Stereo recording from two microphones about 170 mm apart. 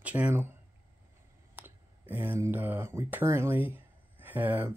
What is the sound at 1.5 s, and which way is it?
Speech, 10° right (ahead or behind).